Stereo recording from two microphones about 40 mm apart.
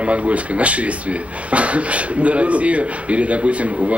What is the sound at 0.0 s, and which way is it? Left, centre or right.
Speech, right.